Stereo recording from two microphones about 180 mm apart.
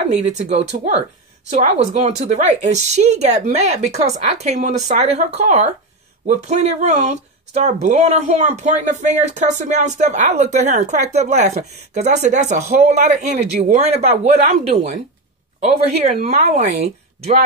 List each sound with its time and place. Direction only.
0.0 s speech: 40° right (ahead or behind)
15.6 s speech: 35° right (ahead or behind)